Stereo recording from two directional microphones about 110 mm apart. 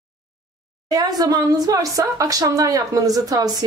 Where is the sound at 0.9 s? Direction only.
35° right (ahead or behind).